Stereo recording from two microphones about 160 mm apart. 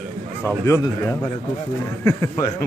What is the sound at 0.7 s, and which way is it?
Speech, 20° left (ahead or behind).